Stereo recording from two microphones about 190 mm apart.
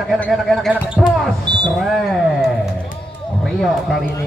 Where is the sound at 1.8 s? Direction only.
Centre (ahead or behind).